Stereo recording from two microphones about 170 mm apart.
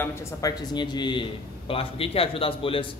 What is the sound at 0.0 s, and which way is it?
A man's voice, 15° left (ahead or behind).